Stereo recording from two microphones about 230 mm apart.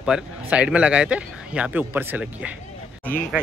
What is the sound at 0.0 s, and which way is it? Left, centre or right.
A man's voice, centre.